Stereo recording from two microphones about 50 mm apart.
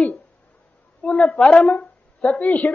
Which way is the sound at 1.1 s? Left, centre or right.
Centre.